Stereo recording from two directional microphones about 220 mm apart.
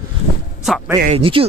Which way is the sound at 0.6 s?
Centre (ahead or behind).